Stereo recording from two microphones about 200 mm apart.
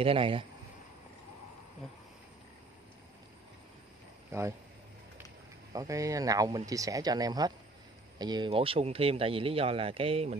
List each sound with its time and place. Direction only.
0.0 s speech: 25° right (ahead or behind)
4.3 s speech: 15° right (ahead or behind)
5.7 s speech: 15° right (ahead or behind)